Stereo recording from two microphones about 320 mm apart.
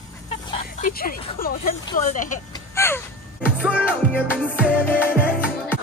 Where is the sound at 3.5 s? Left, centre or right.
Centre.